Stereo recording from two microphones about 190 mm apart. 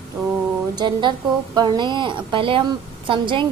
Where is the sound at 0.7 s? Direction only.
25° right (ahead or behind).